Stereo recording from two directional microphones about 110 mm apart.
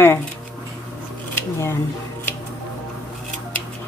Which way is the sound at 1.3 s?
20° left (ahead or behind).